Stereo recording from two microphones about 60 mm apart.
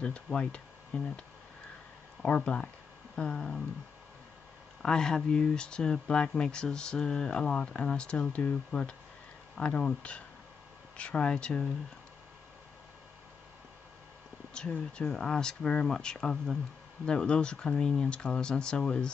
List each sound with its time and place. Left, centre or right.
0.0 s speech: centre
2.2 s speech: left
4.8 s speech: centre
14.5 s speech: centre